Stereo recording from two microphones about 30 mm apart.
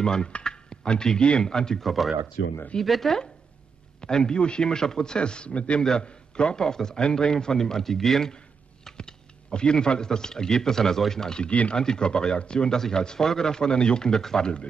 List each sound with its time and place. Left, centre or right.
0.0 s speech: left
0.3 s a sound: left
1.4 s speech: left
1.8 s speech: centre
4.0 s a man's voice: left
4.4 s a man's voice: left
4.6 s a man's voice: left
5.8 s a man's voice: left
6.6 s speech: centre
7.5 s speech: centre
8.8 s speech: left
11.7 s speech: left